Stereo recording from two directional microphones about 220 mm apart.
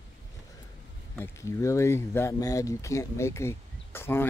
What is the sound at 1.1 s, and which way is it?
Speech, 10° left (ahead or behind).